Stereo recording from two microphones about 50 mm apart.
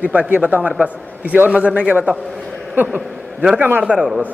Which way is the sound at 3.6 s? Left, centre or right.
Right.